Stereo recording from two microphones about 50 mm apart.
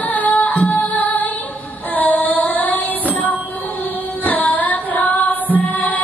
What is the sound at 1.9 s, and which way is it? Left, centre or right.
Child singing, left.